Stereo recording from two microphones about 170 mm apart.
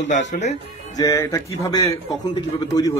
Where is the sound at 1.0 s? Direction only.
15° left (ahead or behind).